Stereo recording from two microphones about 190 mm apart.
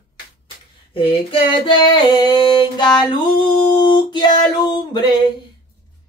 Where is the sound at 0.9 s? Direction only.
30° left (ahead or behind).